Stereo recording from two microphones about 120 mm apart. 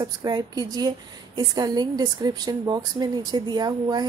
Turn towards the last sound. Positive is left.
turn(degrees=-35)  # may be behind; listen again after turning